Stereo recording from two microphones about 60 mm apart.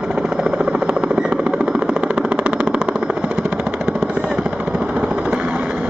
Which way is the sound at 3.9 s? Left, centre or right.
Centre.